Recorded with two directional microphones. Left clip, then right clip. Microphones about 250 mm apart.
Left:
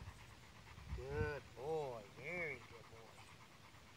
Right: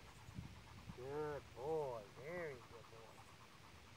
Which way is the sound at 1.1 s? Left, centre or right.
Left.